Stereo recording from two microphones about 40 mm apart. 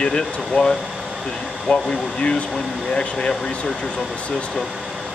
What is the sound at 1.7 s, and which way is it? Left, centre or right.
Speech, left.